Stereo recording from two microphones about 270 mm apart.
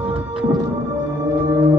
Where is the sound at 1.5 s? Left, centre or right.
Centre.